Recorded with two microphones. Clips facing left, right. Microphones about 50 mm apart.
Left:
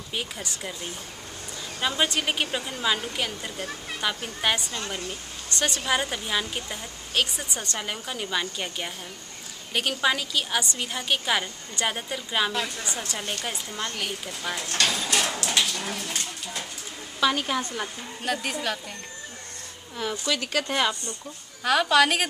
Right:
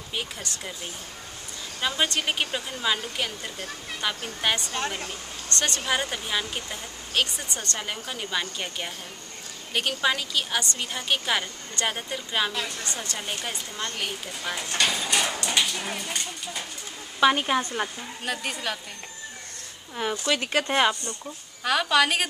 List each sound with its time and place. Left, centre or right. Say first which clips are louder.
1.8 s a woman's voice: left 1 dB; centre
13.2 s a woman's voice: left 1 dB; centre
17.2 s speech: right 3 dB; right
18.2 s speech: left 2 dB; centre
20.0 s speech: right 2 dB; right
21.6 s speech: left 2 dB; centre